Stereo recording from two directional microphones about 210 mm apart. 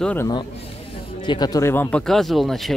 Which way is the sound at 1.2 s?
20° left (ahead or behind).